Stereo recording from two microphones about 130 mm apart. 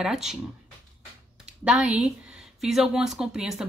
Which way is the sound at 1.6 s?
5° right (ahead or behind).